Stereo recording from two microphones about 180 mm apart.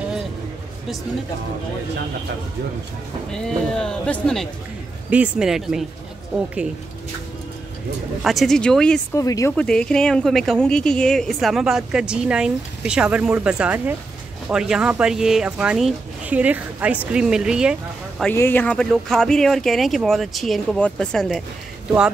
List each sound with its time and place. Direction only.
3.4 s speech: 5° left (ahead or behind)
5.1 s speech: 5° right (ahead or behind)
8.2 s speech: centre (ahead or behind)
9.1 s speech: 20° left (ahead or behind)
9.6 s speech: 5° left (ahead or behind)
18.2 s speech: 10° left (ahead or behind)